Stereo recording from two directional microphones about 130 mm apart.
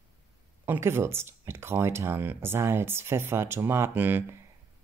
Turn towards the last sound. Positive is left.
turn(degrees=-15)  # may be behind; listen again after turning